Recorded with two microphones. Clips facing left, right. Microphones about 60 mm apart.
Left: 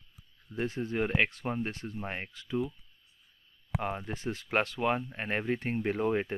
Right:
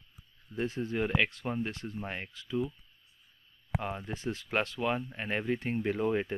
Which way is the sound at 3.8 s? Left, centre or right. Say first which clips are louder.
Left 2 dB; left.